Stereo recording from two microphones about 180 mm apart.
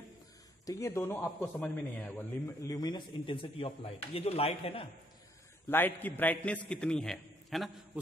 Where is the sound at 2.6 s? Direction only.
20° left (ahead or behind).